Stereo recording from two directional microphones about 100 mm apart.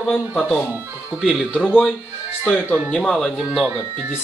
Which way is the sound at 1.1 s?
15° right (ahead or behind).